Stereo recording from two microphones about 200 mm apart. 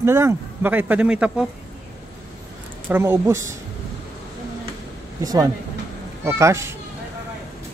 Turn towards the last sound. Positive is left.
turn(degrees=-15)  # may be behind; listen again after turning